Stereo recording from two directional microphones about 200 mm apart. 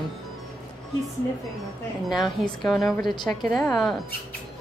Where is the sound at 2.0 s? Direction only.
Centre (ahead or behind).